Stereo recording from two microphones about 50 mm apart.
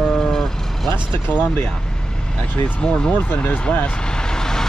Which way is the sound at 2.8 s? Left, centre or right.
Centre.